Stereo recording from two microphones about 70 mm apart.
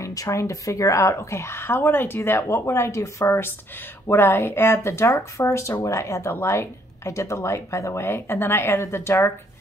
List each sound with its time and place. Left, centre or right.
0.0 s speech: left
6.3 s speech: left